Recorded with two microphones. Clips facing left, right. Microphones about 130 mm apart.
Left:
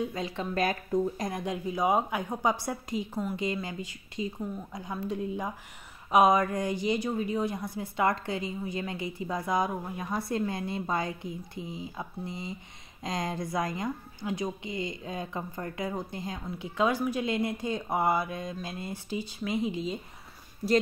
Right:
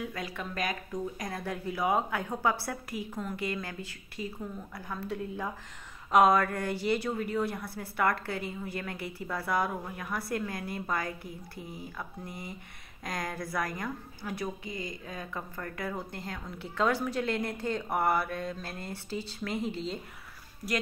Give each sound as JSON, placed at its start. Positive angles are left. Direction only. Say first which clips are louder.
{"t": 0.0, "sound": "a woman's voice", "louder": "left 5 dB", "side_deg": 25}